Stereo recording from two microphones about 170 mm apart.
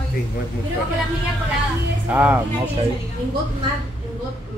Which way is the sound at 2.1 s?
10° right (ahead or behind).